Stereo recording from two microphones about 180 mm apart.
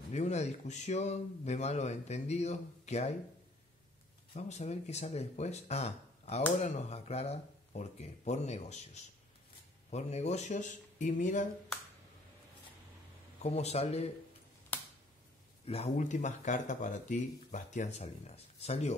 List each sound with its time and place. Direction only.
0.1 s speech: 40° left (ahead or behind)
4.3 s speech: 40° left (ahead or behind)
13.4 s speech: 35° left (ahead or behind)
15.6 s speech: 35° left (ahead or behind)